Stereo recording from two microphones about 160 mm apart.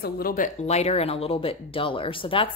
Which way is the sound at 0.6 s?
40° left (ahead or behind).